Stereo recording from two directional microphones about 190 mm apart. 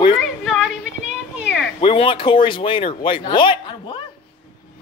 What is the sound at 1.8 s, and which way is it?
Speech, 30° left (ahead or behind).